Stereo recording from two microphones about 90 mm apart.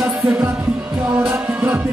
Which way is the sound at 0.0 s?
15° right (ahead or behind).